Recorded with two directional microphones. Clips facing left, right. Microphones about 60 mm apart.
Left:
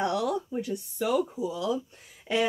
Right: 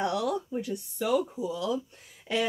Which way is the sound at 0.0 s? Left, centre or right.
Centre.